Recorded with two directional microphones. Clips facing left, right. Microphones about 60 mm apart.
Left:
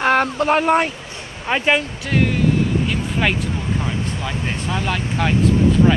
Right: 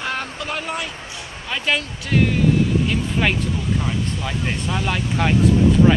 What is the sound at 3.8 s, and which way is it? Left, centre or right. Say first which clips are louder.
Speech: even; centre.